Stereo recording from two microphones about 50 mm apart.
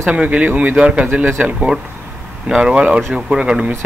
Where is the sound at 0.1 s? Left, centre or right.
Right.